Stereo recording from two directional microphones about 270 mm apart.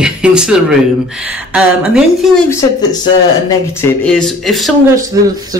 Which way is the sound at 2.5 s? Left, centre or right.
Centre.